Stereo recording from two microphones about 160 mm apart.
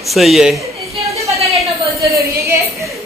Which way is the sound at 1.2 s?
40° right (ahead or behind).